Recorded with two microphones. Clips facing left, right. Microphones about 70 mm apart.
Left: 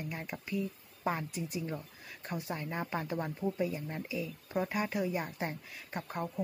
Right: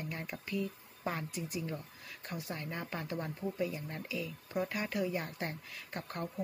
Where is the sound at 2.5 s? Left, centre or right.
Centre.